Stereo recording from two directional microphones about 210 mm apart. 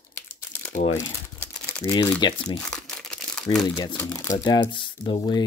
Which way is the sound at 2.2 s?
20° left (ahead or behind).